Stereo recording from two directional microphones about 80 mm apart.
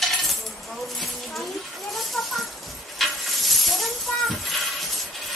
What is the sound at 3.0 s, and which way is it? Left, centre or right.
Snake, centre.